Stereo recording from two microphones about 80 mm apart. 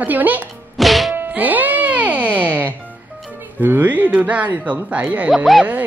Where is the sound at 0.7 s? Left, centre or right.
Centre.